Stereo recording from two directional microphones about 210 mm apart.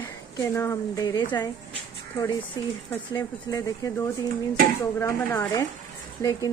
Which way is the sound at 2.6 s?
20° left (ahead or behind).